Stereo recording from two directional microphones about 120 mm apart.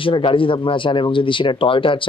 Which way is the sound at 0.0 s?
45° left (ahead or behind).